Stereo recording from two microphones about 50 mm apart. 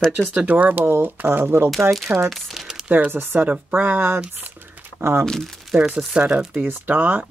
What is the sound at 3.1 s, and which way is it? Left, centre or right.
Speech, right.